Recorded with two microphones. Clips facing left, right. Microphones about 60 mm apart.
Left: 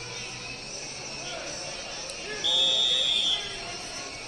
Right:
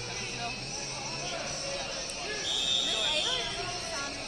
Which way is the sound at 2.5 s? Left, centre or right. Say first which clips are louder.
Left 7 dB; right.